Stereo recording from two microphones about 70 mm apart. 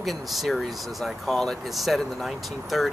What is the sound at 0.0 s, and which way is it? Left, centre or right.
Speech, centre.